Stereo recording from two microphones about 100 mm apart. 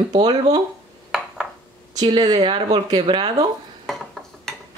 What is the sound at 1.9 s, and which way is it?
Speech, 45° right (ahead or behind).